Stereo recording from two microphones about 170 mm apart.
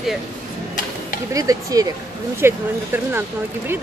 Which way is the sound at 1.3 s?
20° right (ahead or behind).